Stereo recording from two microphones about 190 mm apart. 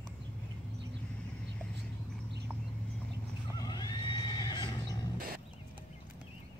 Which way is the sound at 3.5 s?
20° left (ahead or behind).